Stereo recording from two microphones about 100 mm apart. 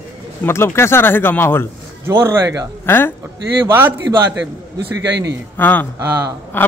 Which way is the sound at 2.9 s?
20° left (ahead or behind).